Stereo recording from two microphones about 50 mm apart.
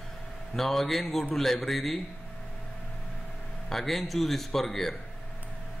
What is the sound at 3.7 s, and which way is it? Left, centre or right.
A man's voice, centre.